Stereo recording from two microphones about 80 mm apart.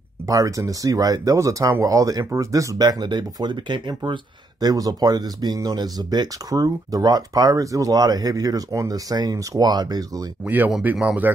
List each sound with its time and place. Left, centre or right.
0.3 s speech: right
10.4 s speech: right